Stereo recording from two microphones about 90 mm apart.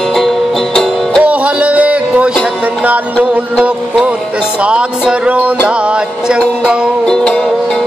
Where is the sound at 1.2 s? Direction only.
15° right (ahead or behind).